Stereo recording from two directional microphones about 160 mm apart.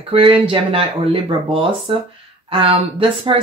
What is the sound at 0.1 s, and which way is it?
Speech, 35° right (ahead or behind).